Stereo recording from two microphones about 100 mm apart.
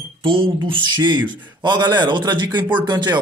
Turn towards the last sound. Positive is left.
turn(degrees=-45)  # may be behind; listen again after turning